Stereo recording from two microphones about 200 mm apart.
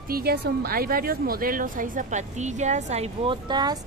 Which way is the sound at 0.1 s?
50° right (ahead or behind).